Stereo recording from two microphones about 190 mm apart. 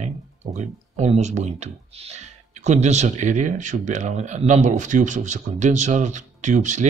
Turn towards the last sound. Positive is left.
turn(degrees=-40)  # may be behind; listen again after turning